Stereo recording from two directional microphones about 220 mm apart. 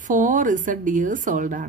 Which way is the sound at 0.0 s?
35° right (ahead or behind).